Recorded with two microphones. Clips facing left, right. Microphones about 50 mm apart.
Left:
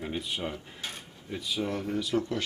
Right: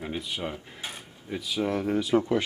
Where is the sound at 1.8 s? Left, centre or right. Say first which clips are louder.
Right 5 dB; right.